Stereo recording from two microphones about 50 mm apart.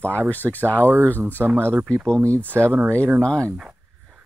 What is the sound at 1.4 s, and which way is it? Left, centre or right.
Speech, centre.